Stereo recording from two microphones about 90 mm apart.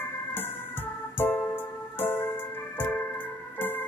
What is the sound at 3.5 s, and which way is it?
Music, 20° left (ahead or behind).